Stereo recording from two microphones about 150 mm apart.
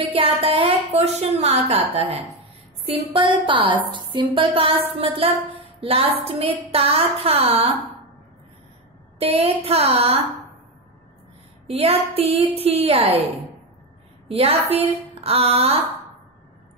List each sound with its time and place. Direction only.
0.1 s a woman's voice: 40° right (ahead or behind)
9.2 s a woman's voice: 40° right (ahead or behind)
11.6 s a woman's voice: 40° right (ahead or behind)
14.2 s a woman's voice: 40° right (ahead or behind)